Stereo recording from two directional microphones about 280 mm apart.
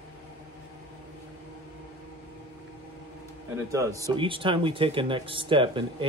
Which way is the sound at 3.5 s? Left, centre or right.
Centre.